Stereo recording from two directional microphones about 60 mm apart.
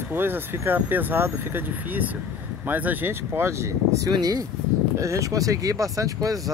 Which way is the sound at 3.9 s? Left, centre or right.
Right.